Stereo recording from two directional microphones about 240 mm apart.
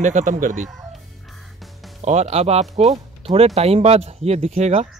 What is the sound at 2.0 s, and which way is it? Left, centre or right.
Speech, right.